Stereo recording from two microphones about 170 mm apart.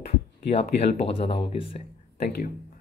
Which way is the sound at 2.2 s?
65° left (ahead or behind).